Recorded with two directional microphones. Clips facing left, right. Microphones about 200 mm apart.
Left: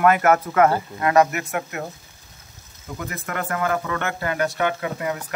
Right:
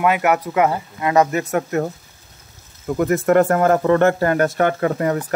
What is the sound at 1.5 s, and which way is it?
Speech, 45° right (ahead or behind).